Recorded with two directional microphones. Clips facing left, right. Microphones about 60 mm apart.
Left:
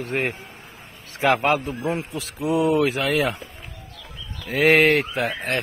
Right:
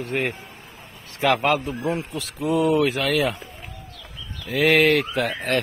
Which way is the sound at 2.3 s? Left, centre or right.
Centre.